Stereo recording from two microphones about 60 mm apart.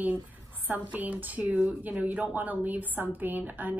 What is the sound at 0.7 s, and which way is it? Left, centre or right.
Speech, right.